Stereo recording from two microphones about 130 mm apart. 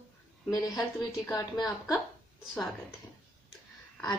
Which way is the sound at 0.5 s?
30° left (ahead or behind).